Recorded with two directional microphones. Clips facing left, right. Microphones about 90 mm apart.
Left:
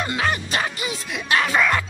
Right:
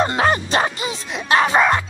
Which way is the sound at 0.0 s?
35° right (ahead or behind).